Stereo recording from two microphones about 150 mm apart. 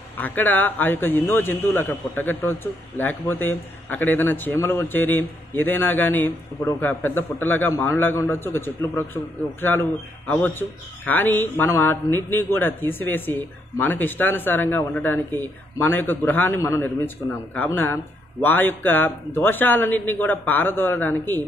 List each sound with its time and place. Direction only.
0.2 s a man's voice: 10° left (ahead or behind)